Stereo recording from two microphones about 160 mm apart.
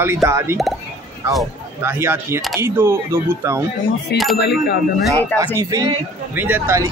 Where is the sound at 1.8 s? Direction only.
15° right (ahead or behind).